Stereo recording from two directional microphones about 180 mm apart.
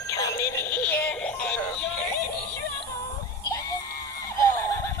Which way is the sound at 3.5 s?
20° left (ahead or behind).